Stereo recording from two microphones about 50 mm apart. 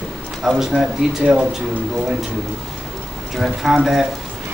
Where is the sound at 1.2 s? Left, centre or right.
Right.